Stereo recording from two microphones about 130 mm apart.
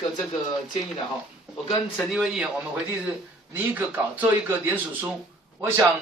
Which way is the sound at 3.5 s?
15° right (ahead or behind).